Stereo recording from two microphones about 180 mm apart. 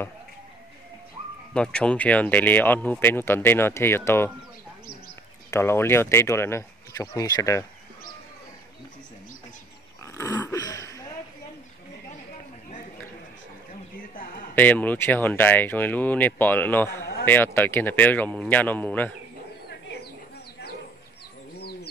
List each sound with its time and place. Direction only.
1.5 s speech: 5° left (ahead or behind)
5.5 s speech: 15° left (ahead or behind)
10.1 s dog: 10° left (ahead or behind)
10.6 s throat clearing: 20° left (ahead or behind)
14.1 s a sound: 55° left (ahead or behind)
14.5 s speech: 10° left (ahead or behind)